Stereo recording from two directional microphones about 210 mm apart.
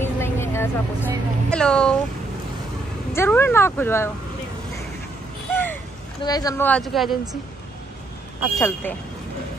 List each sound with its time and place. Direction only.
0.2 s a woman's voice: 10° left (ahead or behind)
3.2 s speech: 10° left (ahead or behind)
5.5 s a sound: 10° left (ahead or behind)
6.2 s speech: 20° left (ahead or behind)
6.7 s speech: centre (ahead or behind)
8.5 s speech: 10° left (ahead or behind)